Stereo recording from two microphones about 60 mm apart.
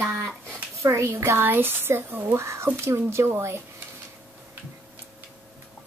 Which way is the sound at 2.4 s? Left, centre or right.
Right.